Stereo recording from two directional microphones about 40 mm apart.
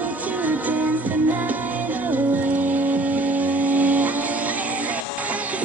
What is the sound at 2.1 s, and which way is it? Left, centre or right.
Vehicle, right.